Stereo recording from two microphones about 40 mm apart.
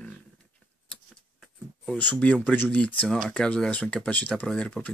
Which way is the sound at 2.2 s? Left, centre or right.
Left.